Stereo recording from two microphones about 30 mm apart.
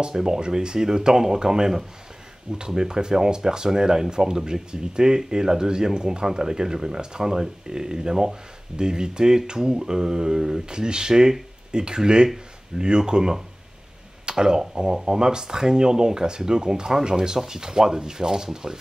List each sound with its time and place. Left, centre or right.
0.1 s speech: right
2.7 s speech: right
14.2 s a sound: right
15.0 s speech: right